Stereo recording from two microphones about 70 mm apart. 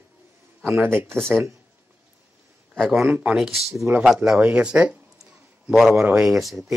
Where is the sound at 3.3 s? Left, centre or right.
Centre.